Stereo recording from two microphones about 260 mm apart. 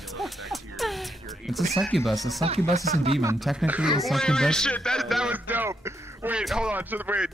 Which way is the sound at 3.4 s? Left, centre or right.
Centre.